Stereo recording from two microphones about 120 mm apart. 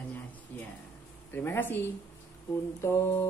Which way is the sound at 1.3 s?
15° left (ahead or behind).